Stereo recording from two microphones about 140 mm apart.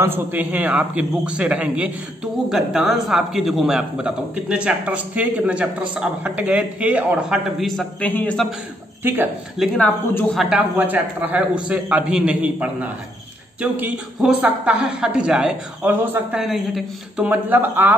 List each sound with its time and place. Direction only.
0.0 s a man's voice: 15° right (ahead or behind)
8.0 s a woman's voice: 10° left (ahead or behind)
9.0 s a man's voice: 15° right (ahead or behind)
9.8 s a woman's voice: 15° left (ahead or behind)
10.3 s a man's voice: centre (ahead or behind)
10.8 s a man's voice: 15° right (ahead or behind)